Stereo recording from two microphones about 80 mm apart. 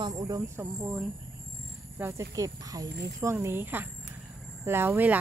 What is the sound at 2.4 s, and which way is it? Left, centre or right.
Speech, right.